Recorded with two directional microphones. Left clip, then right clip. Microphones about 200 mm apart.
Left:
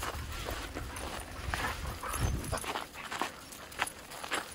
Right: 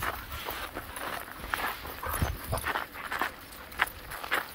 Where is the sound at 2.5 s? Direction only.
35° right (ahead or behind).